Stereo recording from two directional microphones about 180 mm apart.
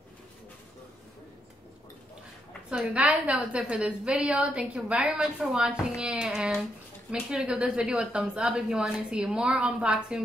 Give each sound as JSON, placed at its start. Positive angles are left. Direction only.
{"t": 2.7, "sound": "a woman's voice", "side_deg": -5}